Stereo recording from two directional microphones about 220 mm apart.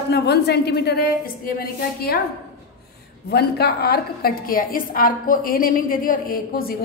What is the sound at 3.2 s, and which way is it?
A woman's voice, 45° left (ahead or behind).